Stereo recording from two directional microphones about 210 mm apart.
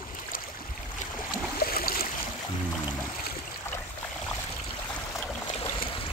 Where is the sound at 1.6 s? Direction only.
45° left (ahead or behind).